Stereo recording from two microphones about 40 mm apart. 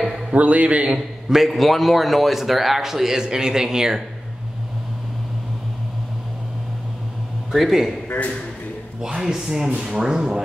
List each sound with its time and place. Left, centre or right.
0.3 s speech: right
0.8 s a man's voice: centre
1.4 s a man's voice: centre
7.5 s a man's voice: centre
9.0 s speech: centre